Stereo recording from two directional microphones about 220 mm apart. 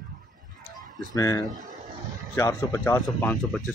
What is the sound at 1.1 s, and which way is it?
Speech, 15° left (ahead or behind).